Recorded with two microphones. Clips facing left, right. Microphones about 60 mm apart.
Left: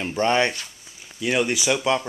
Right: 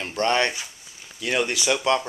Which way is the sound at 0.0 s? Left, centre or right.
Centre.